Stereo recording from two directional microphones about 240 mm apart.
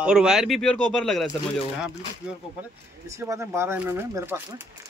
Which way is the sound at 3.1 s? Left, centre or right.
Centre.